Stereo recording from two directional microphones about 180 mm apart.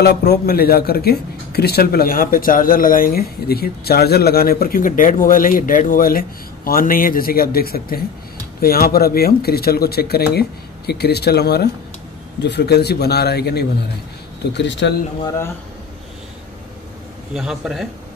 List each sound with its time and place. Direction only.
0.0 s speech: 60° left (ahead or behind)
12.4 s speech: 70° left (ahead or behind)
14.5 s speech: 80° left
15.2 s speech: 15° left (ahead or behind)
17.3 s a man's voice: centre (ahead or behind)